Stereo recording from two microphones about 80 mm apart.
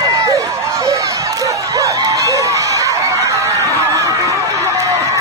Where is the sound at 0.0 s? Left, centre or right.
Right.